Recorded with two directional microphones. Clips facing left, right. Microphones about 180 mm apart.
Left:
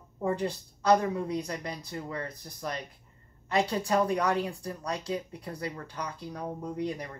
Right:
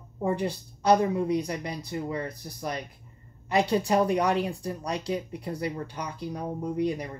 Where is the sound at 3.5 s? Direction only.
15° right (ahead or behind).